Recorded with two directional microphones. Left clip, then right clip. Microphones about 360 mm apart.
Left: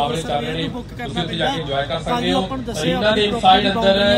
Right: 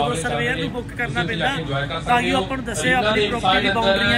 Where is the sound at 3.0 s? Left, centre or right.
Left.